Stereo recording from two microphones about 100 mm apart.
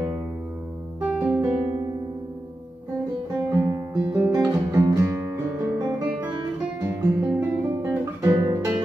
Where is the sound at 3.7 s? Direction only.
30° right (ahead or behind).